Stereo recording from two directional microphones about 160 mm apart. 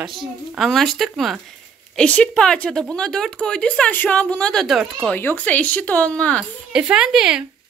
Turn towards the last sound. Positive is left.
turn(degrees=-5)  # may be behind; listen again after turning